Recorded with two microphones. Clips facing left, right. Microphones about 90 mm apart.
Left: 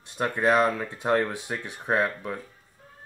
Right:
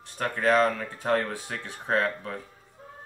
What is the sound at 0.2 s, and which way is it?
Speech, 15° left (ahead or behind).